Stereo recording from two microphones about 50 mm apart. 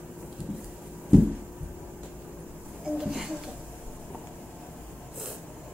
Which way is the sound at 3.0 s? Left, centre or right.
Centre.